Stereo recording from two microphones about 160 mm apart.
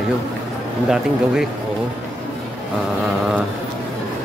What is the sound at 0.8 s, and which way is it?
Speech, 5° right (ahead or behind).